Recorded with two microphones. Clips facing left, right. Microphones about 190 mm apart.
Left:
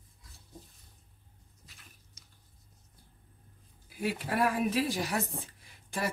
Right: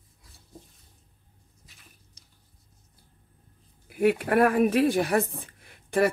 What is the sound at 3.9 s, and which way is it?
Speech, 60° right (ahead or behind).